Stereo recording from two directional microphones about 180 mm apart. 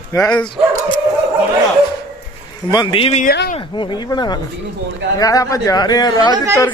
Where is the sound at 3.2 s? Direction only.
65° left (ahead or behind).